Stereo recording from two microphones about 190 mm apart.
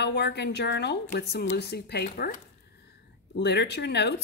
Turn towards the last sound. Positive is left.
turn(degrees=60)  # may be behind; listen again after turning